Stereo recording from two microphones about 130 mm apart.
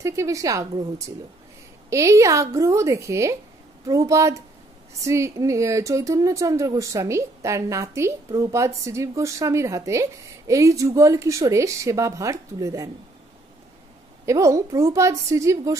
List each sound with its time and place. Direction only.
0.0 s speech: 25° right (ahead or behind)
14.2 s speech: 25° right (ahead or behind)